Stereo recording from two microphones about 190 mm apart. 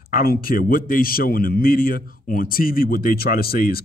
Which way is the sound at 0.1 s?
50° left (ahead or behind).